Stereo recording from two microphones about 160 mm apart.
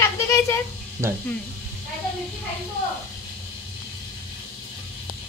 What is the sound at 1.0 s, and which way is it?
Speech, 15° right (ahead or behind).